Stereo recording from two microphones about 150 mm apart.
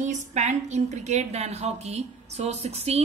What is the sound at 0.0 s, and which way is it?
A woman's voice, 55° right (ahead or behind).